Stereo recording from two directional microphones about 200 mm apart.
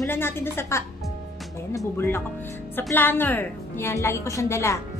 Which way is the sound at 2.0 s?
10° left (ahead or behind).